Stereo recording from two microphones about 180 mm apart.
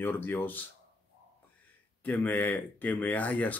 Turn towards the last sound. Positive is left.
turn(degrees=10)  # may be behind; listen again after turning